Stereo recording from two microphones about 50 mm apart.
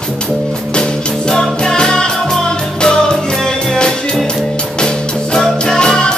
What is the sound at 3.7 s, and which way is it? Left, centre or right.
Music, centre.